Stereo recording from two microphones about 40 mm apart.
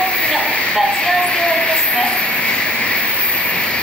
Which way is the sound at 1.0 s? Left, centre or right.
Left.